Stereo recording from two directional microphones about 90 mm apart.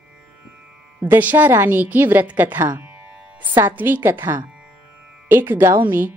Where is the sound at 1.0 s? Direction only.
20° right (ahead or behind).